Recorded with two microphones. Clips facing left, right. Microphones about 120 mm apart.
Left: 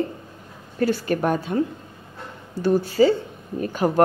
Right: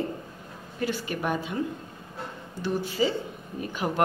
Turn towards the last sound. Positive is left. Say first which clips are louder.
# left 8 dB
turn(degrees=45)  # may be behind; listen again after turning